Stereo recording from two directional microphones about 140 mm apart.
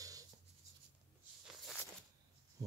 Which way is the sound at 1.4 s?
Centre (ahead or behind).